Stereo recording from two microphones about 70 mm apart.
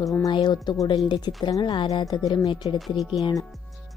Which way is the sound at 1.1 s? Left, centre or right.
Left.